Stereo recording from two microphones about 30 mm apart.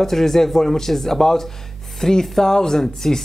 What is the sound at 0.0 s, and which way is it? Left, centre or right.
Speech, centre.